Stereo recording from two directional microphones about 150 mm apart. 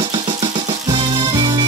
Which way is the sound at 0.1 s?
30° right (ahead or behind).